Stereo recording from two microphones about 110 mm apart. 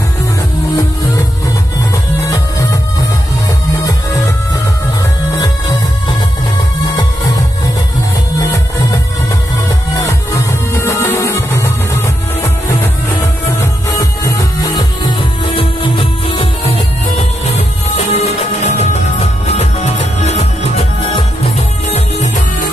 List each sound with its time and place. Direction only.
5.4 s music: 35° left (ahead or behind)
8.4 s music: 30° left (ahead or behind)
13.2 s music: 25° left (ahead or behind)
15.5 s music: 50° left (ahead or behind)
17.9 s music: 80° left